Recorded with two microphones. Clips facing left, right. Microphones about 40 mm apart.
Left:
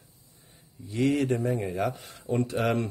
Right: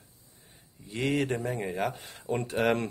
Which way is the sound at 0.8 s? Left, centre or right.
Right.